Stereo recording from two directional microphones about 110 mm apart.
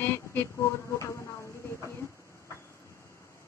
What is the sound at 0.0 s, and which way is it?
Speech, 20° left (ahead or behind).